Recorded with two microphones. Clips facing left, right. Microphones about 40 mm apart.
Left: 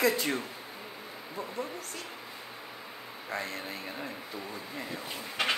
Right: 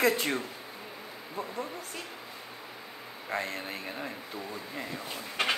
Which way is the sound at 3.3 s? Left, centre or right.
Right.